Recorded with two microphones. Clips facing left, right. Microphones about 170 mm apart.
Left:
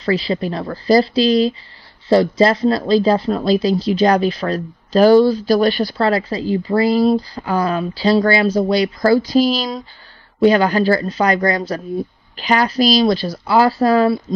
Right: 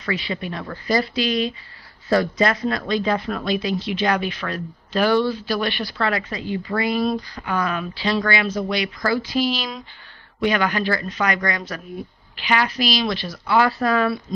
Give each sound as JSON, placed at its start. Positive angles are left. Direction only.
{"t": 0.0, "sound": "speech", "side_deg": 35}